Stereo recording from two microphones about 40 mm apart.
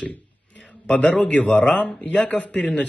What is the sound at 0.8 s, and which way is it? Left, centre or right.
A man's voice, left.